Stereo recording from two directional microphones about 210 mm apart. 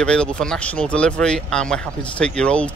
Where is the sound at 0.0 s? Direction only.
5° left (ahead or behind).